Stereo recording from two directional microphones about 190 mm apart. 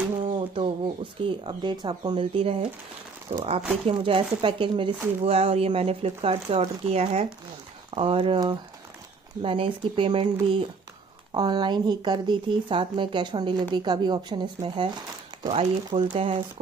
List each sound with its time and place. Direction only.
0.2 s a sound: 30° right (ahead or behind)
1.2 s speech: 25° right (ahead or behind)
11.3 s speech: 20° right (ahead or behind)